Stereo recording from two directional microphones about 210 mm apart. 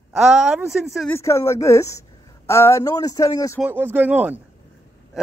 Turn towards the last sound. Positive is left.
turn(degrees=-5)  # may be behind; listen again after turning